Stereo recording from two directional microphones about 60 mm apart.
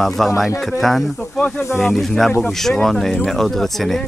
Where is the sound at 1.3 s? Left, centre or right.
Centre.